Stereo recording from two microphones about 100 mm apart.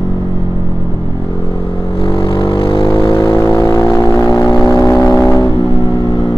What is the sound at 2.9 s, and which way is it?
Vehicle, 35° left (ahead or behind).